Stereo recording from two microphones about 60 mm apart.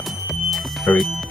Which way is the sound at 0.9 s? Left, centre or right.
Left.